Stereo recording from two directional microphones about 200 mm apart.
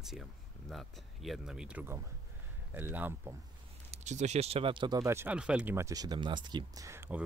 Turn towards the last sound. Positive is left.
turn(degrees=-10)  # may be behind; listen again after turning